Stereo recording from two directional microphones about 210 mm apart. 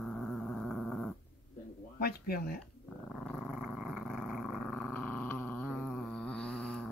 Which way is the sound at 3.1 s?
Centre (ahead or behind).